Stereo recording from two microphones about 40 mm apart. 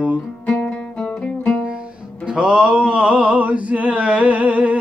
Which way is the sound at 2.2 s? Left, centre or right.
Right.